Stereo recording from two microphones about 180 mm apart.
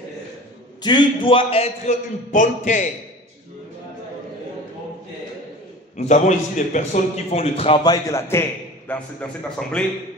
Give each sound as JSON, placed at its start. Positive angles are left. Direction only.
{"t": 0.8, "sound": "a man's voice", "side_deg": 25}
{"t": 5.9, "sound": "a man's voice", "side_deg": 40}